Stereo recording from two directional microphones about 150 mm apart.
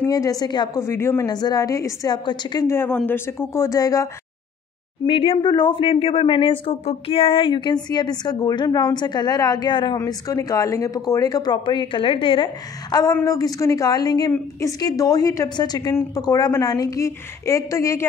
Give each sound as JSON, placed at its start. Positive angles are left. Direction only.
{"t": 0.1, "sound": "a woman's voice", "side_deg": 25}
{"t": 5.0, "sound": "a woman's voice", "side_deg": 35}
{"t": 12.9, "sound": "a woman's voice", "side_deg": 20}